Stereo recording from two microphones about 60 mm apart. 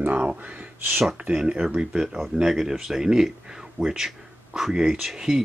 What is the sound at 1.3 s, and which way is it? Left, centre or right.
Speech, centre.